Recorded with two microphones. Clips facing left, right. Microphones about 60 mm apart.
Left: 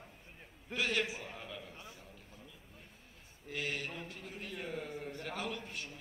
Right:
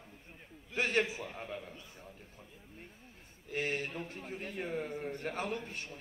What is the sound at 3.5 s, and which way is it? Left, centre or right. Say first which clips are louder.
A man's voice: right 4 dB; right.